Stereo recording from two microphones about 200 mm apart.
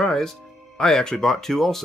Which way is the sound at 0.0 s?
Centre (ahead or behind).